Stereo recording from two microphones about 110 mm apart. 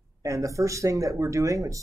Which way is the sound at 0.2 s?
30° right (ahead or behind).